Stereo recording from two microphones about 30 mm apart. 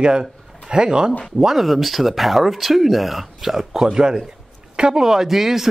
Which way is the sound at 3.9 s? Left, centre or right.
Right.